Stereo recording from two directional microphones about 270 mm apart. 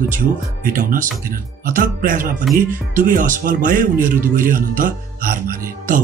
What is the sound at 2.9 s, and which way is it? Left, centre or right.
A man's voice, right.